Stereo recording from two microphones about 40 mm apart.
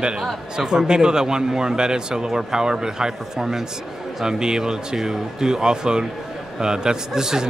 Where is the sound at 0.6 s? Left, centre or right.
Centre.